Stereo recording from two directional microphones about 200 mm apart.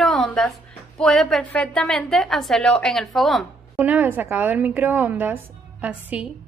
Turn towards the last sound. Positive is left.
turn(degrees=-5)  # may be behind; listen again after turning